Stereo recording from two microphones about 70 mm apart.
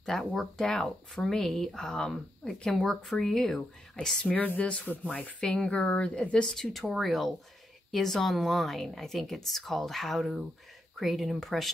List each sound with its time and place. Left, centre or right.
0.0 s speech: centre